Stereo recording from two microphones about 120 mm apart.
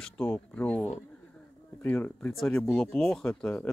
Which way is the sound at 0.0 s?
15° left (ahead or behind).